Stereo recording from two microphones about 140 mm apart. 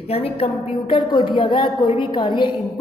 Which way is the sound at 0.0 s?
45° left (ahead or behind).